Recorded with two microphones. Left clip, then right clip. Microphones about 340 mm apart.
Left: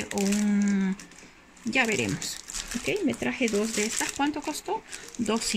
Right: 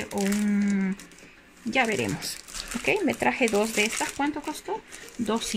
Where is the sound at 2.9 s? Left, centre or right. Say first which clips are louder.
Right 5 dB; right.